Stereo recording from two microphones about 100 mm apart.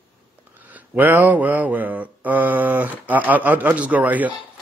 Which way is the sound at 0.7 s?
15° right (ahead or behind).